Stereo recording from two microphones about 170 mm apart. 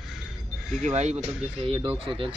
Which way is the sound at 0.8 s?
40° right (ahead or behind).